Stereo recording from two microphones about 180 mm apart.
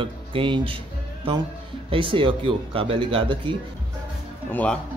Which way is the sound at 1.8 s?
30° right (ahead or behind).